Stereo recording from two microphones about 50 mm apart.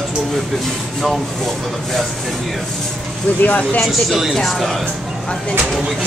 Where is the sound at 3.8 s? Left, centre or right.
Centre.